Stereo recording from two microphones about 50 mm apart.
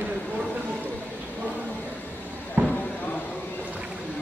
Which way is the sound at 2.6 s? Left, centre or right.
Right.